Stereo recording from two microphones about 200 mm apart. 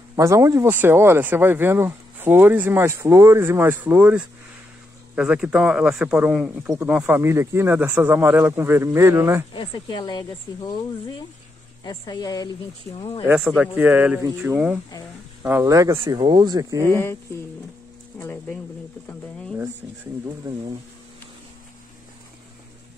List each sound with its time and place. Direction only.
0.1 s speech: 15° right (ahead or behind)
9.5 s speech: 25° left (ahead or behind)
11.8 s speech: 20° left (ahead or behind)
13.6 s speech: 10° right (ahead or behind)
16.8 s speech: 10° left (ahead or behind)
18.2 s speech: 10° left (ahead or behind)
20.2 s speech: 20° right (ahead or behind)